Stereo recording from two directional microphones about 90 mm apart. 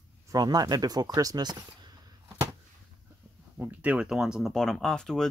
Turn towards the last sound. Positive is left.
turn(degrees=5)  # may be behind; listen again after turning